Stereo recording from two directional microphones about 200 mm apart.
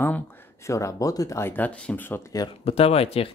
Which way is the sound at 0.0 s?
10° left (ahead or behind).